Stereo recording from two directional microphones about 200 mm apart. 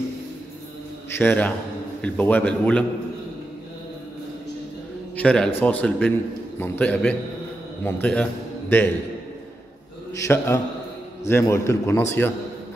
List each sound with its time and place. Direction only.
1.1 s a man's voice: 10° left (ahead or behind)
5.1 s a man's voice: 5° left (ahead or behind)
10.1 s a man's voice: 15° left (ahead or behind)